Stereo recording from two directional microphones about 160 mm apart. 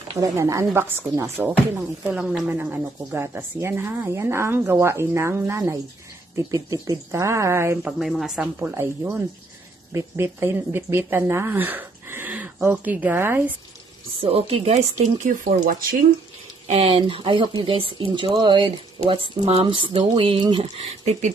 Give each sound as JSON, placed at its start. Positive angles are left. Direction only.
{"t": 0.2, "sound": "speech", "side_deg": -20}
{"t": 8.0, "sound": "speech", "side_deg": 0}
{"t": 8.5, "sound": "speech", "side_deg": -15}
{"t": 14.2, "sound": "speech", "side_deg": -40}
{"t": 16.6, "sound": "speech", "side_deg": -40}